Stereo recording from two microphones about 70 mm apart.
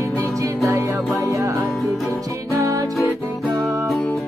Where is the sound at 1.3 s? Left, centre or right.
Right.